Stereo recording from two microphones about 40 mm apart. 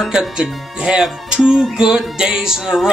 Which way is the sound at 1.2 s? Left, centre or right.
Right.